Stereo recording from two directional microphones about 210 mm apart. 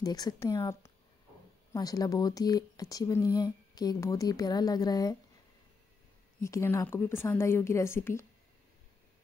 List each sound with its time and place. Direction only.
0.0 s speech: 20° left (ahead or behind)
6.4 s speech: 10° left (ahead or behind)